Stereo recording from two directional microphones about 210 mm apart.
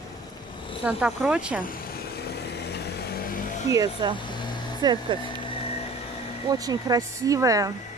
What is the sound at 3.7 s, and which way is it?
Speech, 20° right (ahead or behind).